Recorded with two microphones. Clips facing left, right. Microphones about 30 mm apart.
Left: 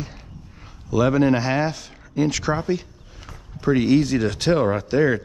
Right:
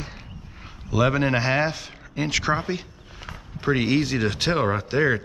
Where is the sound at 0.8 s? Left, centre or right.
Centre.